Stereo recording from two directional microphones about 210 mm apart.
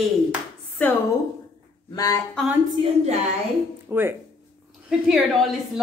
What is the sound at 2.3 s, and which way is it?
Speech, centre (ahead or behind).